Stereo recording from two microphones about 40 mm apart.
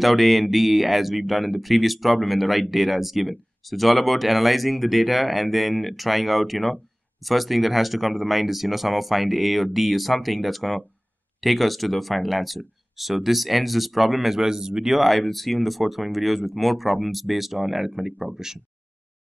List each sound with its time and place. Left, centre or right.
0.0 s speech: centre